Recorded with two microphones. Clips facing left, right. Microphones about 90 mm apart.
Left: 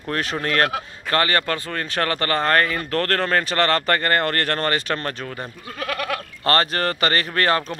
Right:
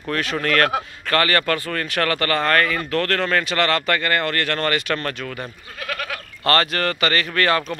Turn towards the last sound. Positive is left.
turn(degrees=35)  # may be behind; listen again after turning